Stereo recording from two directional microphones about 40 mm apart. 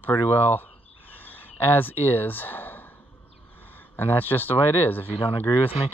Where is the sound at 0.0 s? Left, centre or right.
Left.